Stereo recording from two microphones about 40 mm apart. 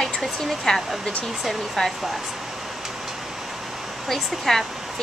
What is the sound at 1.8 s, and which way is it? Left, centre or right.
Speech, centre.